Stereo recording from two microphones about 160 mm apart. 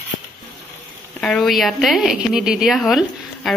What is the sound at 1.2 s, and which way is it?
A woman's voice, 5° left (ahead or behind).